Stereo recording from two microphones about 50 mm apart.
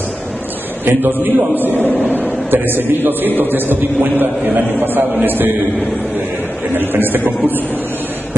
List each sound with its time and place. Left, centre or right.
0.8 s a man's voice: right
6.7 s speech: right